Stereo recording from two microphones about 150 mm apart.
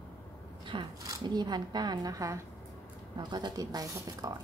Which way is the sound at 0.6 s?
30° right (ahead or behind).